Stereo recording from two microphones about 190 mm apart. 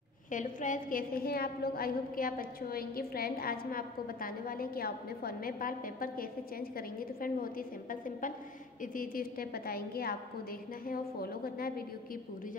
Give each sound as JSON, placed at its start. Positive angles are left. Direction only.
{"t": 0.3, "sound": "a woman's voice", "side_deg": 40}